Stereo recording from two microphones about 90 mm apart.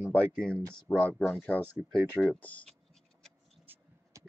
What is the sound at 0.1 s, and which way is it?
Speech, 15° left (ahead or behind).